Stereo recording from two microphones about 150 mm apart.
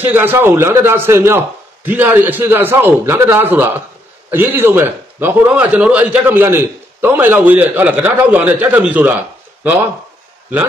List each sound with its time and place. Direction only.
0.0 s a man's voice: 15° right (ahead or behind)